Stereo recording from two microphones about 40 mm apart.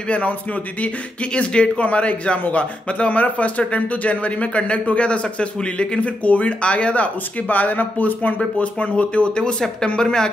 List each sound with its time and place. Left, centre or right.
0.1 s speech: left
8.4 s speech: left